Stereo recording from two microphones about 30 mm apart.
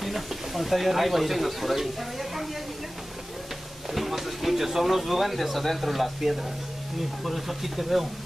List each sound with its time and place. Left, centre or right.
0.0 s speech: centre
3.9 s speech: centre